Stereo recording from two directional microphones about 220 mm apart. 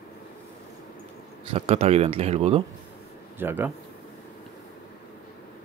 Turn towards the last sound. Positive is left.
turn(degrees=-10)  # may be behind; listen again after turning